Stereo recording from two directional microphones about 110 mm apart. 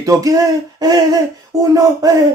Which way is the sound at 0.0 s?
30° right (ahead or behind).